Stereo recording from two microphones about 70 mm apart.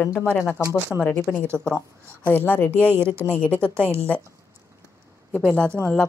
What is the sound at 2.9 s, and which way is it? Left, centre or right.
A woman's voice, right.